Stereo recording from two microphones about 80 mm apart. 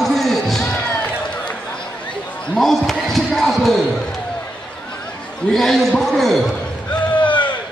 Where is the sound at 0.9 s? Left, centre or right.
Left.